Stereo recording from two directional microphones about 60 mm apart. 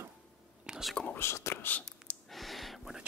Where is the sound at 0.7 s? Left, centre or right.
Centre.